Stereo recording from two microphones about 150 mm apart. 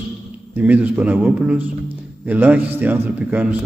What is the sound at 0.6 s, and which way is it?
A man's voice, 10° right (ahead or behind).